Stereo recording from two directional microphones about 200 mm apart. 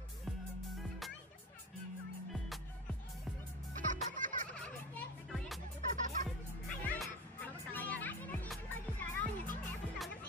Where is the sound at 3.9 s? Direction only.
40° right (ahead or behind).